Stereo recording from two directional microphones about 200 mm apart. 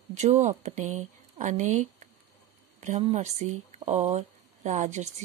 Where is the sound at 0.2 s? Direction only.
35° right (ahead or behind).